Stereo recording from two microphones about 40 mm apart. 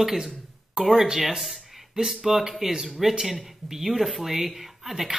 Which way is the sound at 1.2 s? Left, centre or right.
Centre.